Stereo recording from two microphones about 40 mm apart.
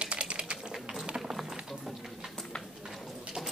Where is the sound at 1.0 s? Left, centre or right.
Right.